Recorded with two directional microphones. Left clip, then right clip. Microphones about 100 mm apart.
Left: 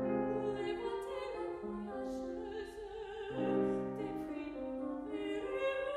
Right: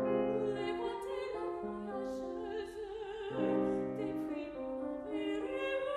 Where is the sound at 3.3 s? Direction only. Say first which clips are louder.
Right 1 dB; 20° right (ahead or behind).